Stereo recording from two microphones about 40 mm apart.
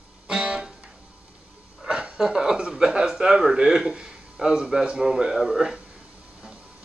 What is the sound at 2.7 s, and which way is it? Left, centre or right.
A man's voice, centre.